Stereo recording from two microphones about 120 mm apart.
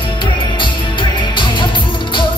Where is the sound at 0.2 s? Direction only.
45° left (ahead or behind).